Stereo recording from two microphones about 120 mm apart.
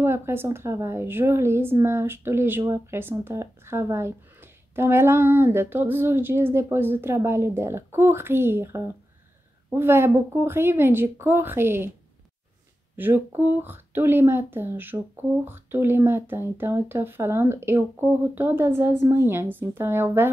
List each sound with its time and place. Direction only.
0.0 s speech: 20° right (ahead or behind)
12.9 s speech: 20° right (ahead or behind)